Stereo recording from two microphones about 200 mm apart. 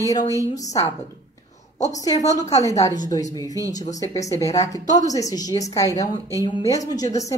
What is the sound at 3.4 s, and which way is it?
Speech, 15° right (ahead or behind).